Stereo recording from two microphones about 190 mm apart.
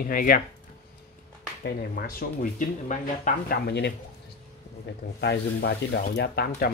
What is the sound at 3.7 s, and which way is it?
Rub, 60° left (ahead or behind).